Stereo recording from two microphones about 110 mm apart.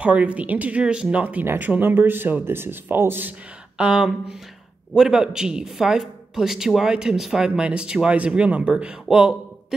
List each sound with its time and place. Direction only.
0.0 s speech: 10° right (ahead or behind)
3.8 s speech: 5° right (ahead or behind)
9.1 s a sound: 5° right (ahead or behind)